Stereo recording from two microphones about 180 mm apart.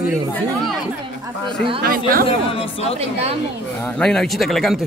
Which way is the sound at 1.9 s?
55° right (ahead or behind).